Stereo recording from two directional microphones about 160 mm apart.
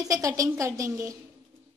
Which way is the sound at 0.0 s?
20° right (ahead or behind).